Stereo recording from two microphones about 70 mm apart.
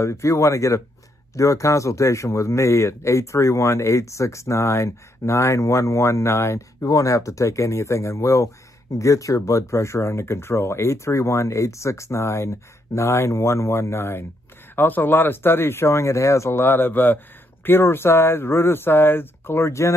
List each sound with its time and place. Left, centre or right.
0.0 s a man's voice: left
6.9 s a man's voice: left